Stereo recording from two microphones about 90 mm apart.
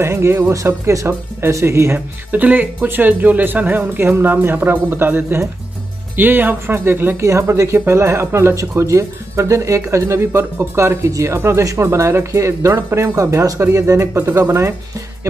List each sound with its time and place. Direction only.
0.0 s speech: 30° right (ahead or behind)
2.0 s speech: 20° right (ahead or behind)